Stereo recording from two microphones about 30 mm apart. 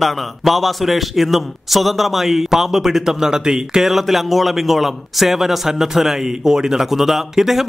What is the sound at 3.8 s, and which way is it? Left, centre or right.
A man's voice, centre.